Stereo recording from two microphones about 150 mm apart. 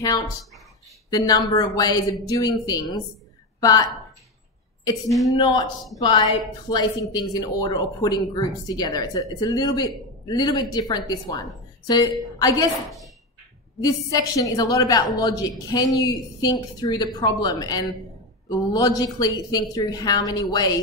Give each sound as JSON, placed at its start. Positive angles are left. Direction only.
{"t": 1.1, "sound": "a woman's voice", "side_deg": 25}
{"t": 5.3, "sound": "a woman's voice", "side_deg": 25}
{"t": 13.7, "sound": "a woman's voice", "side_deg": 25}